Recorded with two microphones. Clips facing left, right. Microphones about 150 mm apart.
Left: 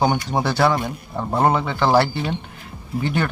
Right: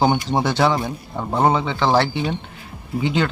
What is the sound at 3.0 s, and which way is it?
Speech, 15° right (ahead or behind).